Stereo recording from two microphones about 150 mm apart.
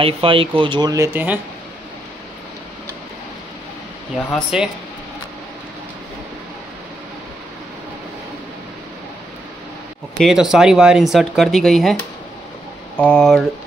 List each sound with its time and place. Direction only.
0.0 s speech: 35° right (ahead or behind); by 1.4 s 10° right (ahead or behind)
4.5 s speech: 5° right (ahead or behind)
10.1 s speech: centre (ahead or behind)